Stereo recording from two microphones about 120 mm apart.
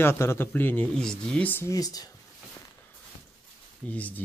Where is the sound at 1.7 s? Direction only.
30° left (ahead or behind).